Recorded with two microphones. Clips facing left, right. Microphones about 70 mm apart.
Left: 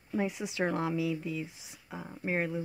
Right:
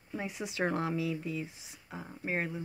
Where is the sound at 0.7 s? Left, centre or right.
Centre.